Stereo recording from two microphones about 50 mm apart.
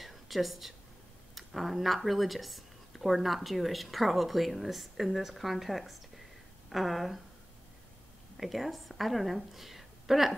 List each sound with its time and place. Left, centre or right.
0.0 s a sound: centre
1.3 s speech: centre
8.4 s a woman's voice: centre